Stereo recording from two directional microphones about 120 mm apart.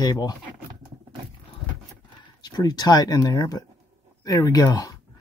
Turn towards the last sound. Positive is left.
turn(degrees=35)  # may be behind; listen again after turning